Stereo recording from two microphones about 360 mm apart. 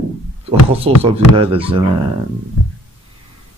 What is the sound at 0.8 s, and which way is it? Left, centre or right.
Speech, centre.